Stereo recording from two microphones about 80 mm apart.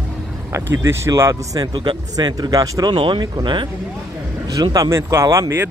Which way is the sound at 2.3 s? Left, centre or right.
Right.